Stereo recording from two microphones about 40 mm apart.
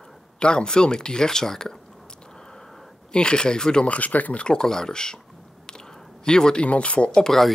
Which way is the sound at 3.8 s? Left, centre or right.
Left.